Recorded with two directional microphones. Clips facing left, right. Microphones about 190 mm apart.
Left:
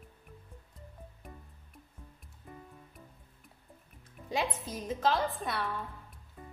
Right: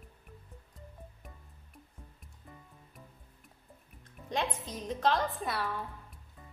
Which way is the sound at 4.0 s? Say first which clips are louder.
Left 1 dB; 5° left (ahead or behind).